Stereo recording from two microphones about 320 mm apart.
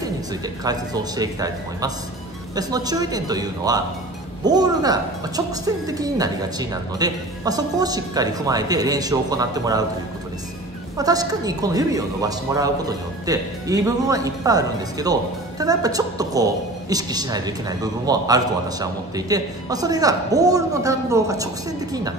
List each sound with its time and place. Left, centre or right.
0.7 s a woman's voice: centre
11.0 s a woman's voice: centre